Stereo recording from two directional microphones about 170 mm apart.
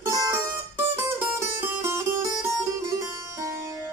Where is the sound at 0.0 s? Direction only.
15° right (ahead or behind).